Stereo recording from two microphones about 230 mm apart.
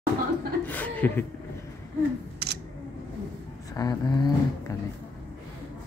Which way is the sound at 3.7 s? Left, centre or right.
Centre.